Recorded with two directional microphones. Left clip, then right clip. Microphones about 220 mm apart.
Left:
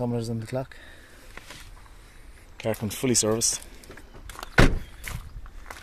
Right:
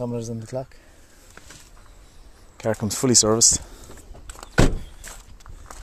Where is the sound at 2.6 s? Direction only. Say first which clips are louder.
Right 4 dB; 20° right (ahead or behind).